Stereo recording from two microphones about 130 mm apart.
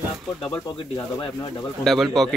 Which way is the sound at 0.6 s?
35° left (ahead or behind).